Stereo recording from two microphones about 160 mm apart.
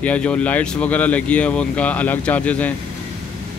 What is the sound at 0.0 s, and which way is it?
Speech, 10° left (ahead or behind).